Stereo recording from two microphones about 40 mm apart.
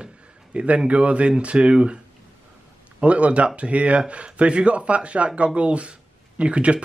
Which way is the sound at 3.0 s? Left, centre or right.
Right.